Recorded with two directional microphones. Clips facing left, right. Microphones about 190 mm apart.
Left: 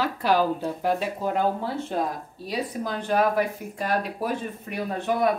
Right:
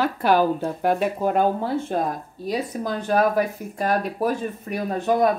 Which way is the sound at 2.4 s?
45° right (ahead or behind).